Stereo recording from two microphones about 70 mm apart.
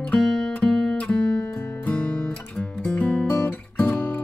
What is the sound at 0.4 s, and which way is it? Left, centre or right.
Music, centre.